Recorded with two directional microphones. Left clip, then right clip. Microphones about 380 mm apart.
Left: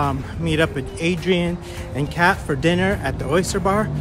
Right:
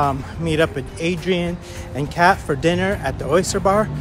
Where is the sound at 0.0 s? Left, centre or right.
Centre.